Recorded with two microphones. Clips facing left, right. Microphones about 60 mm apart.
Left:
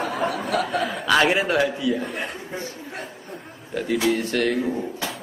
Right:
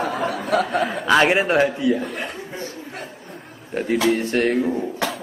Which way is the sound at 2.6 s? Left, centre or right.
Right.